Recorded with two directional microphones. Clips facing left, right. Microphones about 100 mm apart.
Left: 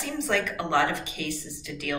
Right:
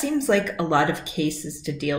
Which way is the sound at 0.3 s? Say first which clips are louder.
Right 3 dB; 20° right (ahead or behind).